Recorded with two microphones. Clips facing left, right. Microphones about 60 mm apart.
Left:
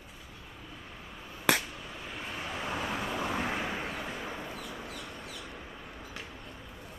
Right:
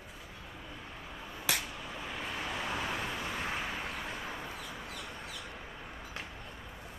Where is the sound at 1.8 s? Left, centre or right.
Centre.